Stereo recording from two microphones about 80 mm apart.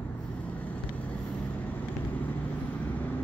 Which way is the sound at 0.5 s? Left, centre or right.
Centre.